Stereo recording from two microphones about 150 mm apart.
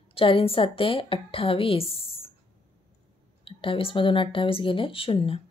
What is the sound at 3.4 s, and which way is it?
A woman's voice, 35° left (ahead or behind).